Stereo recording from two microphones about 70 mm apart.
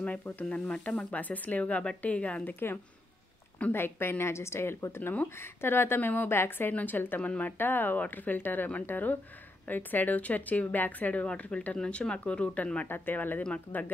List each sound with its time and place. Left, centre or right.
0.0 s speech: left
3.7 s a woman's voice: left